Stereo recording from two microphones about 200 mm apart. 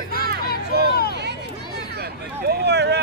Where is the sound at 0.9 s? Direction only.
50° left (ahead or behind).